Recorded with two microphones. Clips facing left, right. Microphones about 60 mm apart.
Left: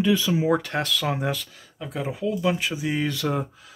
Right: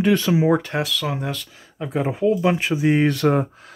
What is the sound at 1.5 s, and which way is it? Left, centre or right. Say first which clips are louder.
Speech: right 7 dB; right.